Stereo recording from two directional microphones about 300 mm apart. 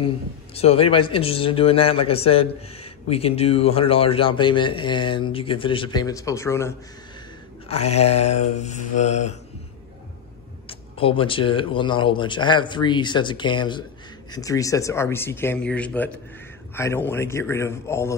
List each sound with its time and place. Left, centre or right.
0.6 s speech: centre
7.6 s mantra: left
10.7 s speech: centre